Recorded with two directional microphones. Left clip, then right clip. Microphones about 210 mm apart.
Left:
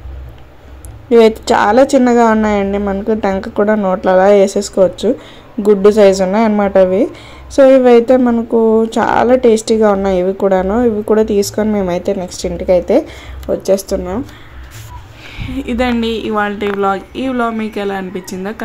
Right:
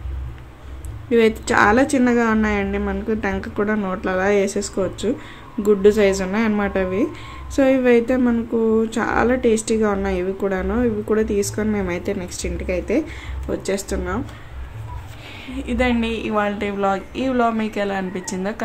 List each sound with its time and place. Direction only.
1.1 s a woman's voice: 15° left (ahead or behind)
15.3 s a woman's voice: 30° left (ahead or behind); by 18.6 s 10° left (ahead or behind)